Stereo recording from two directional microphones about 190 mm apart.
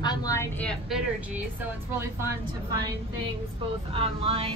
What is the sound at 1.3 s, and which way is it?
Speech, 10° right (ahead or behind).